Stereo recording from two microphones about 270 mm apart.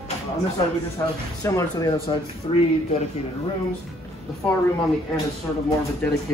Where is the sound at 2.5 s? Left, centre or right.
Left.